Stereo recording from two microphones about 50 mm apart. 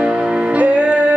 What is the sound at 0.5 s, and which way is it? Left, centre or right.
Music, right.